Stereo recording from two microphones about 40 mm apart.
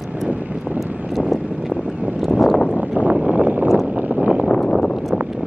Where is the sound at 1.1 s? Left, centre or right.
Centre.